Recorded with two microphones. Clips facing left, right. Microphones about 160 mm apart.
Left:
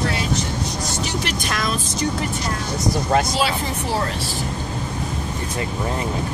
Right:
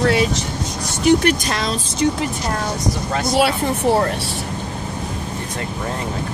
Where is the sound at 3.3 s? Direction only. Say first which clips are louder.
Right 5 dB; 60° right (ahead or behind).